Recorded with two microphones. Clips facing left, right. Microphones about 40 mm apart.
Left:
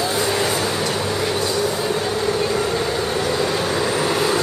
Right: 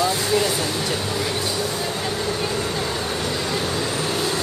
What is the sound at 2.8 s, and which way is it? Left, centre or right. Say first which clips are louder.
Vehicle: left 4 dB; centre.